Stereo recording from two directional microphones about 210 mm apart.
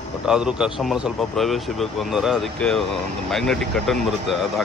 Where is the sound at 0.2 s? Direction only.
5° right (ahead or behind).